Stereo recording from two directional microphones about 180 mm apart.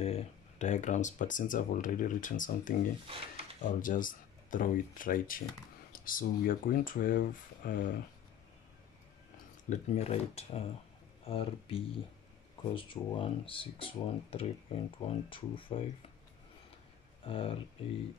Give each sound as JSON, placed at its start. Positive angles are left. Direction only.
{"t": 0.0, "sound": "speech", "side_deg": 35}
{"t": 9.7, "sound": "speech", "side_deg": 40}
{"t": 17.2, "sound": "speech", "side_deg": 30}